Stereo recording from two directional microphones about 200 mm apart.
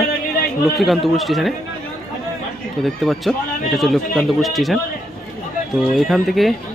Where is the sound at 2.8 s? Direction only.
Centre (ahead or behind).